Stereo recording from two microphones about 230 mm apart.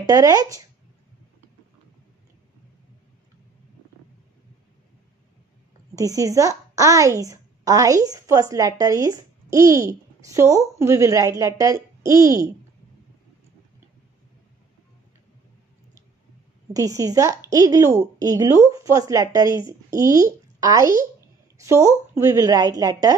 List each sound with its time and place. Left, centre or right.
0.0 s a woman's voice: centre
5.9 s a woman's voice: centre
16.7 s a woman's voice: centre